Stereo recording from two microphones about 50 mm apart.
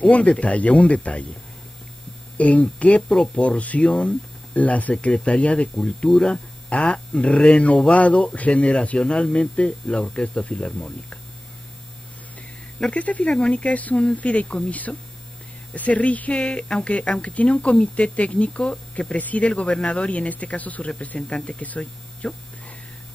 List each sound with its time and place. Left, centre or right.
0.0 s a woman's voice: left
2.3 s a woman's voice: left
12.8 s a woman's voice: left